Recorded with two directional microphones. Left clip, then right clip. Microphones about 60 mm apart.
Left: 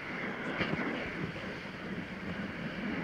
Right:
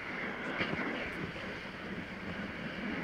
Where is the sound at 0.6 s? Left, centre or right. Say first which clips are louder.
Left 1 dB; right.